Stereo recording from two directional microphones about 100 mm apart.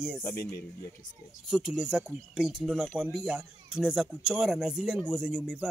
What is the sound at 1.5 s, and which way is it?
Speech, 5° right (ahead or behind).